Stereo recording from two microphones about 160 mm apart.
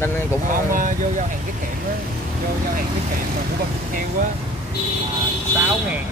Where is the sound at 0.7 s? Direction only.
55° right (ahead or behind).